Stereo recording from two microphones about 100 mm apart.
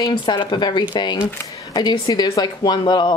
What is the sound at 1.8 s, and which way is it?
Speech, 45° left (ahead or behind).